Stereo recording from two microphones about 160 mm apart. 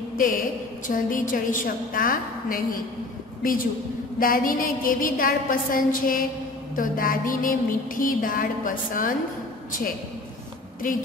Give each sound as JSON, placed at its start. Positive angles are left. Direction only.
{"t": 0.2, "sound": "a woman's voice", "side_deg": 55}
{"t": 4.2, "sound": "a woman's voice", "side_deg": 60}